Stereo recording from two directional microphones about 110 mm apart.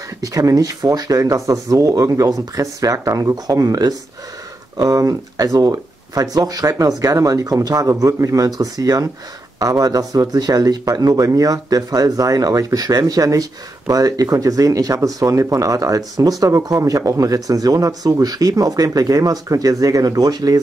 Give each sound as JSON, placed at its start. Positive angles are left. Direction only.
{"t": 0.2, "sound": "speech", "side_deg": -30}